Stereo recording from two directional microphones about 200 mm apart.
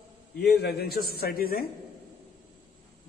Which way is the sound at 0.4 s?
55° left (ahead or behind).